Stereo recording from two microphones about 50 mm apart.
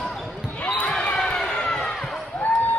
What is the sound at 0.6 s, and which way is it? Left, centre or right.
Basketball bounce, left.